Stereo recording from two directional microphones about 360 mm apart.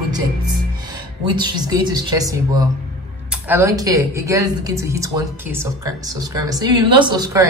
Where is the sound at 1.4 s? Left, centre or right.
Centre.